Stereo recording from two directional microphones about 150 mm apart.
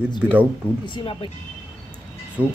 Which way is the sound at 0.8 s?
35° left (ahead or behind).